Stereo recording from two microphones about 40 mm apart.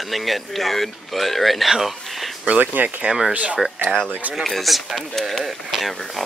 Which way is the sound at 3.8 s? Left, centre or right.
Left.